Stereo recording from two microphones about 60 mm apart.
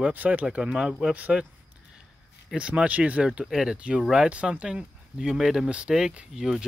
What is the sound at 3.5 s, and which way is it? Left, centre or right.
Speech, centre.